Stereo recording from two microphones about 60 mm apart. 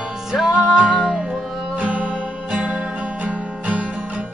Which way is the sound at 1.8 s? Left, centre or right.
Centre.